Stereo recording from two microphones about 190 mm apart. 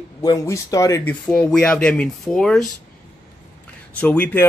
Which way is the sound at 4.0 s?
5° left (ahead or behind).